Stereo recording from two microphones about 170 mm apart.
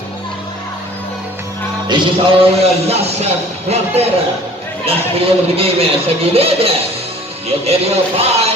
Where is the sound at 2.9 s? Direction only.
35° right (ahead or behind).